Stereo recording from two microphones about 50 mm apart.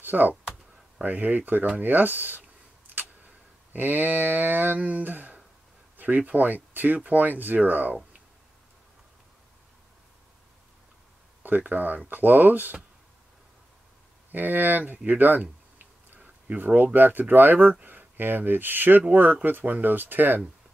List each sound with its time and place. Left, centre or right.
0.0 s speech: right
3.7 s speech: right
11.4 s speech: right
14.3 s speech: right